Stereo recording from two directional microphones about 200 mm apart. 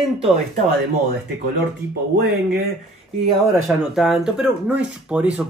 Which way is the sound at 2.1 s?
55° right (ahead or behind).